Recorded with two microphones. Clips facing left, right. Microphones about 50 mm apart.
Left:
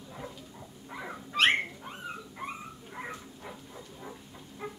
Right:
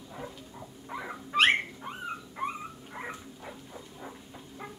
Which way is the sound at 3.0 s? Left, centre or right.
Centre.